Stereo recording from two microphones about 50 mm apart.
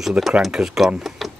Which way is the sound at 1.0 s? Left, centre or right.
Centre.